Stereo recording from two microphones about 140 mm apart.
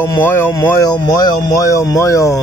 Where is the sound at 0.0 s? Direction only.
15° left (ahead or behind).